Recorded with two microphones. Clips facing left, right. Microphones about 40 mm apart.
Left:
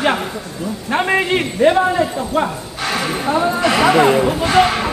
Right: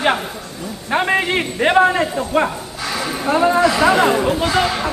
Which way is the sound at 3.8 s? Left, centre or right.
Left.